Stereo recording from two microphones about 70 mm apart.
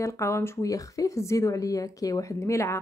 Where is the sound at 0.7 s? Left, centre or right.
Left.